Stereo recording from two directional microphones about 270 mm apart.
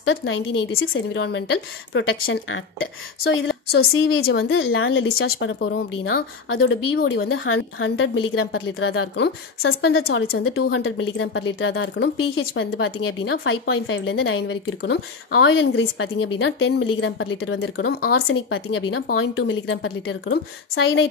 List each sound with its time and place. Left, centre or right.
0.0 s speech: left